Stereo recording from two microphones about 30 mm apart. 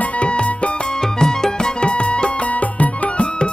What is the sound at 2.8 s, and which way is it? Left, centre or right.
Music, left.